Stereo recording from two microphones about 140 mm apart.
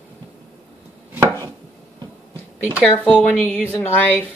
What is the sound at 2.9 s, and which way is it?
Speech, 10° left (ahead or behind).